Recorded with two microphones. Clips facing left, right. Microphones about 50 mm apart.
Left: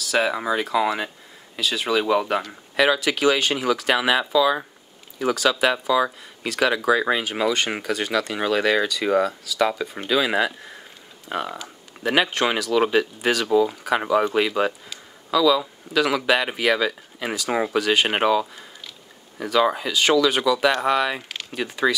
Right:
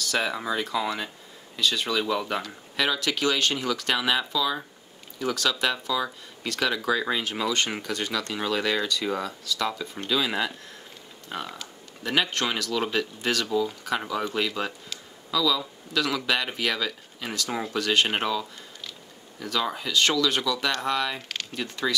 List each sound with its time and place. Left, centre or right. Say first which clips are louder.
0.0 s speech: left 5 dB; centre; by 7.2 s left
7.8 s speech: left 6 dB; centre
14.9 s a sound: left 6 dB; centre
15.6 s speech: left 6 dB; centre
18.1 s speech: left 7 dB; left
19.4 s speech: left 8 dB; centre
21.3 s speech: left 4 dB; centre